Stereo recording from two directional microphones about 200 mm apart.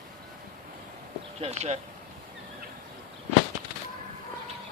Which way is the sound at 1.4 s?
35° right (ahead or behind).